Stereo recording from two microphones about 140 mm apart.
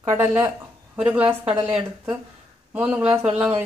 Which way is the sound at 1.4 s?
40° right (ahead or behind).